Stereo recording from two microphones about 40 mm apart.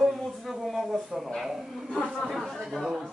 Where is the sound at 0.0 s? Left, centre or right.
Centre.